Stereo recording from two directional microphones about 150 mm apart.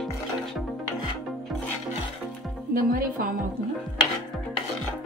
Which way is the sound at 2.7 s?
70° right (ahead or behind).